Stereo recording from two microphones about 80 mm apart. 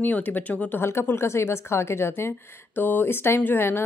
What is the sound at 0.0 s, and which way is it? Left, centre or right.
Speech, left.